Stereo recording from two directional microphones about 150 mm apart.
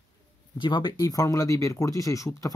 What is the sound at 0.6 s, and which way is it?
Speech, 30° left (ahead or behind).